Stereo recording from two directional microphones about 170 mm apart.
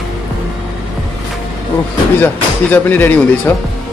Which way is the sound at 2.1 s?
10° left (ahead or behind).